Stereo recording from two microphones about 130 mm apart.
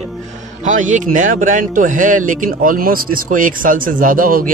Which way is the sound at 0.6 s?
75° right (ahead or behind).